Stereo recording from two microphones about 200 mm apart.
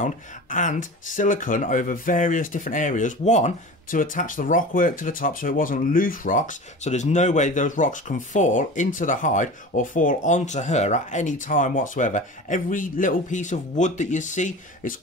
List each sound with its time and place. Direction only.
0.0 s speech: 40° left (ahead or behind)